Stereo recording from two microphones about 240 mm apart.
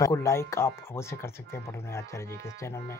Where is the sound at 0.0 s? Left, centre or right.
Centre.